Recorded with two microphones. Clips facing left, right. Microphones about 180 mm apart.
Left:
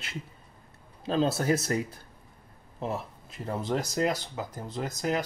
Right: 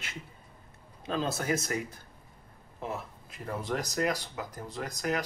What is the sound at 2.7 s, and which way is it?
Speech, 30° left (ahead or behind).